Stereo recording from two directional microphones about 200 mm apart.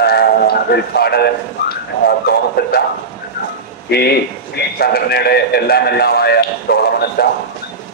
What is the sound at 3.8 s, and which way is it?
A man's voice, 55° left (ahead or behind).